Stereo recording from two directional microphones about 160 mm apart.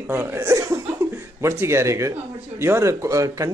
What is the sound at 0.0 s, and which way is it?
Speech, 15° right (ahead or behind).